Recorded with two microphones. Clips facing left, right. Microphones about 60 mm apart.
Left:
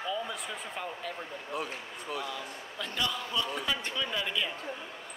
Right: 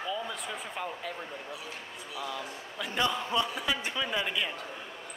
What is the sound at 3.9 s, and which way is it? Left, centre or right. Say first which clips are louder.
Speech: right 1 dB; centre.